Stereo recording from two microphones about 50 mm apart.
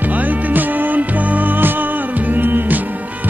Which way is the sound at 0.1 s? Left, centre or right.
Right.